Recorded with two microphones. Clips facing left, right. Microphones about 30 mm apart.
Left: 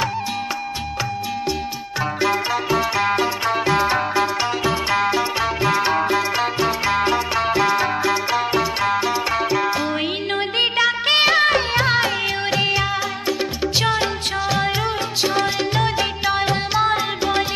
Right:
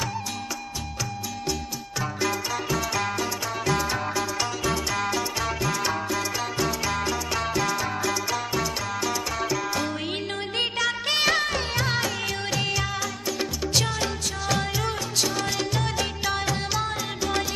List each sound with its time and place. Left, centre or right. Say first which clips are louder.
2.2 s music: left 7 dB; left
10.6 s music of bollywood: left 7 dB; left
11.4 s music: left 9 dB; left
13.8 s music: left 8 dB; left
15.2 s music: left 7 dB; left